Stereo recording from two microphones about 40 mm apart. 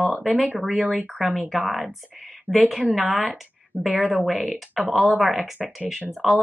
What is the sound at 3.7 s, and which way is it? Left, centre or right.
Speech, right.